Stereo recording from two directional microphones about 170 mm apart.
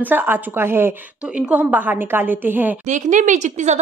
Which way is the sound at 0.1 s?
10° right (ahead or behind).